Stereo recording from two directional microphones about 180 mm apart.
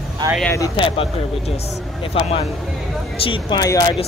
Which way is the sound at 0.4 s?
15° left (ahead or behind).